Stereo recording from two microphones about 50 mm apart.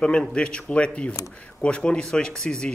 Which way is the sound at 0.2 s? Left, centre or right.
Centre.